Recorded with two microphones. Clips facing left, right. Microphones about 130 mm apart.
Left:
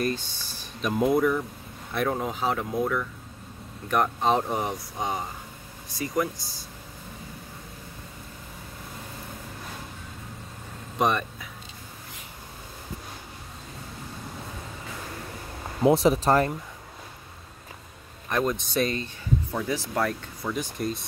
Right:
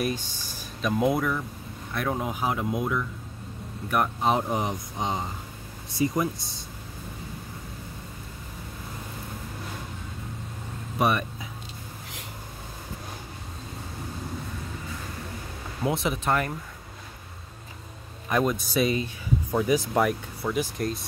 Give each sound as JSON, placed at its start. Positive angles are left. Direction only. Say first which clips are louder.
{"t": 0.0, "sound": "speech", "louder": "left 1 dB", "side_deg": -10}
{"t": 0.8, "sound": "speech", "louder": "left 2 dB", "side_deg": 0}
{"t": 11.0, "sound": "speech", "louder": "even", "side_deg": -10}
{"t": 15.8, "sound": "speech", "louder": "left 7 dB", "side_deg": 35}
{"t": 18.3, "sound": "speech", "louder": "right 1 dB", "side_deg": -5}
{"t": 20.7, "sound": "speech", "louder": "even", "side_deg": 0}